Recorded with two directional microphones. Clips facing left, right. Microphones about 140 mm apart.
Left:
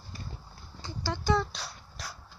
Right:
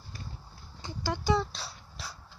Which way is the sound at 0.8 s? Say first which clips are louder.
Even; 15° right (ahead or behind).